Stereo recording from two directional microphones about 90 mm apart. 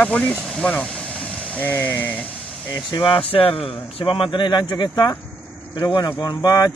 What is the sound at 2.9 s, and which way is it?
Speech, 75° left (ahead or behind).